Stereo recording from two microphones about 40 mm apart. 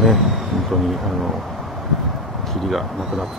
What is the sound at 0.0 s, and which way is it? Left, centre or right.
Speech, centre.